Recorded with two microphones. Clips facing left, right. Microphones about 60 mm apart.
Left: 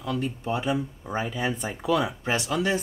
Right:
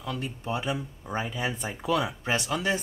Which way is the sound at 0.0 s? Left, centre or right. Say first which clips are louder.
Left 5 dB; centre.